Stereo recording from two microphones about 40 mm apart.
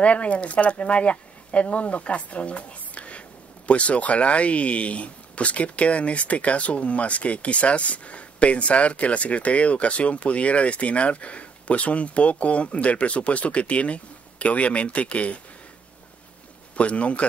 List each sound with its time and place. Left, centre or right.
0.0 s speech: left
16.7 s speech: left